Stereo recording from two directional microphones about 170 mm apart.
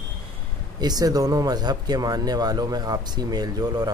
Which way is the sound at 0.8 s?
20° right (ahead or behind).